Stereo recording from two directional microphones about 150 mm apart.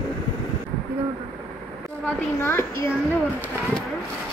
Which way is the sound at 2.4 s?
15° left (ahead or behind).